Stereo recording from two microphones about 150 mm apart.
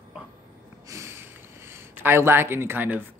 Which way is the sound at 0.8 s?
20° right (ahead or behind).